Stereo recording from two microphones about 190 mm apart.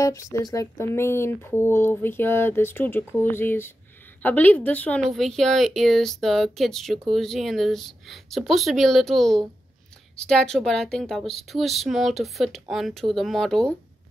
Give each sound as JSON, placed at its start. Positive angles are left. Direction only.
{"t": 0.0, "sound": "a woman's voice", "side_deg": 15}